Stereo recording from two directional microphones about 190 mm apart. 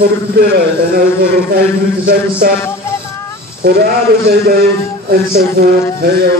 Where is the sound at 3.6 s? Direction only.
55° right (ahead or behind).